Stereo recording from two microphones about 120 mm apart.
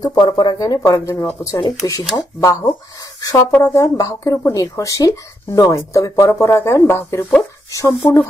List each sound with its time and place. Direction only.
0.0 s speech: 35° left (ahead or behind)